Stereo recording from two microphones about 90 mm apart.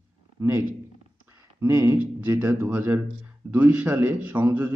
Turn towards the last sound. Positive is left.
turn(degrees=-20)  # may be behind; listen again after turning